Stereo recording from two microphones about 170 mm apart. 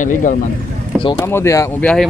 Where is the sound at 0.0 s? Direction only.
50° left (ahead or behind).